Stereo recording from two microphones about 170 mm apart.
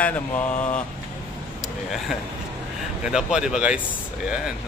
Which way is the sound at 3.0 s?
5° right (ahead or behind).